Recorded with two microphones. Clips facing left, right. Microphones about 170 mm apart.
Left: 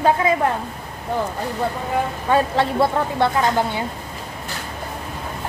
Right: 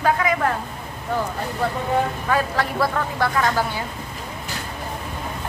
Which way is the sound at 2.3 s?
25° left (ahead or behind).